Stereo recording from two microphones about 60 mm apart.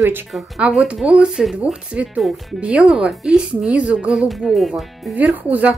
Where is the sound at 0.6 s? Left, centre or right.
Centre.